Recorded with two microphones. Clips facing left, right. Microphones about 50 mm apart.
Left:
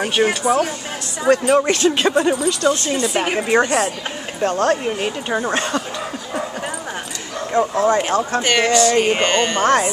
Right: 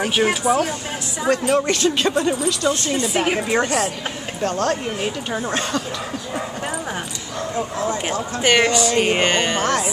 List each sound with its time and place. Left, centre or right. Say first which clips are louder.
0.0 s speech: left 1 dB; centre
1.2 s speech: left 4 dB; centre
2.3 s speech: left 3 dB; centre
4.4 s speech: left 4 dB; left
5.0 s speech: left 3 dB; centre
7.5 s speech: left 9 dB; left
8.4 s speech: right 1 dB; centre
9.6 s speech: left 5 dB; left